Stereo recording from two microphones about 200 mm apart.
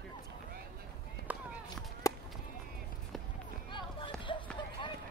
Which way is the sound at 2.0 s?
15° left (ahead or behind).